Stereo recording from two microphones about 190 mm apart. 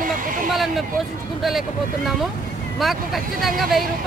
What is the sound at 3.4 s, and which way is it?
Speech, centre (ahead or behind).